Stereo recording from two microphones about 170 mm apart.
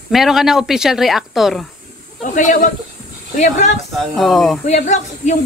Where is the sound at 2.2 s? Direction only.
50° left (ahead or behind).